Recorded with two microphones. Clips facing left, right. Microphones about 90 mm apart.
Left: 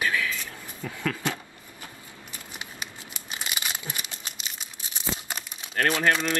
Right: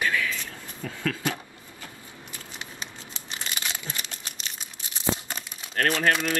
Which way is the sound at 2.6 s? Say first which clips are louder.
Left 1 dB; 15° left (ahead or behind).